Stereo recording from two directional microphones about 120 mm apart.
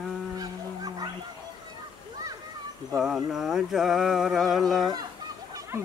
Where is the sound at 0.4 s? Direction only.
35° right (ahead or behind).